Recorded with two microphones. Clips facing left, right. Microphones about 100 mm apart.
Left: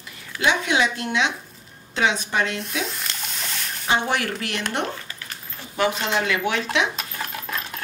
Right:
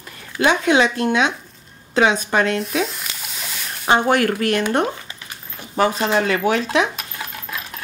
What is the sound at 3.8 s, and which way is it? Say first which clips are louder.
Speech: right 7 dB; 50° right (ahead or behind).